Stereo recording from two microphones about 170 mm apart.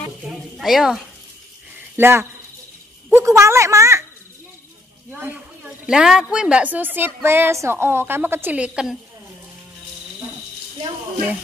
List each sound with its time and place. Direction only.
0.3 s snake: centre (ahead or behind)
2.0 s a woman's voice: 15° right (ahead or behind)
5.1 s a woman's voice: 10° right (ahead or behind)